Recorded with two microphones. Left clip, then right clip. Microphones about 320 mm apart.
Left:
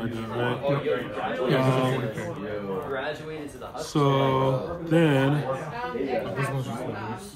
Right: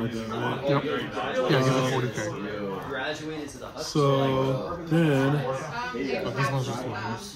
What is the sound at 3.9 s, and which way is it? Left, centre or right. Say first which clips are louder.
Speech: left 1 dB; left.